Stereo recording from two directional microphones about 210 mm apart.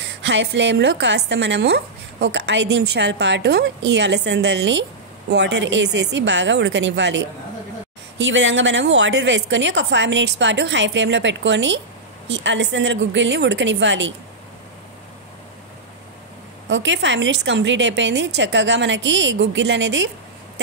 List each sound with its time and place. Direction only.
0.3 s a woman's voice: 55° right (ahead or behind)
16.6 s a woman's voice: 60° right (ahead or behind)